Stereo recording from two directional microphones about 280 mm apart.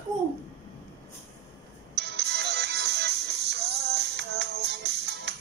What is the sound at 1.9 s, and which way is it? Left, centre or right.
Music, right.